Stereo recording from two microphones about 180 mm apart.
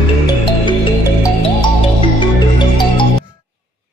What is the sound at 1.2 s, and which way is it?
Music, 25° left (ahead or behind).